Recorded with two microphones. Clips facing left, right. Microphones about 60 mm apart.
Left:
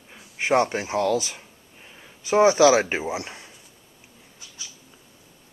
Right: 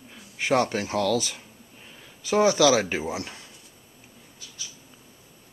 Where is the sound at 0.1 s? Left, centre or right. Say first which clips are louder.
Left 2 dB; centre.